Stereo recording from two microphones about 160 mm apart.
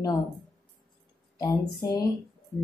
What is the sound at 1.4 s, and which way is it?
Speech, 20° left (ahead or behind).